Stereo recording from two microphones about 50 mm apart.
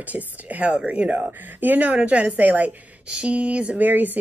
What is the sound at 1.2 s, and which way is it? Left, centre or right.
A woman's voice, right.